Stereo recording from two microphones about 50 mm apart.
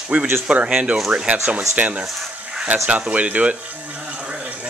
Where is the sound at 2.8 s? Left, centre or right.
Right.